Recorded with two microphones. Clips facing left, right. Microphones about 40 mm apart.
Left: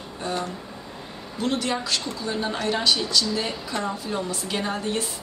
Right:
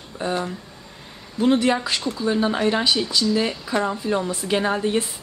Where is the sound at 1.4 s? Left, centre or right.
Centre.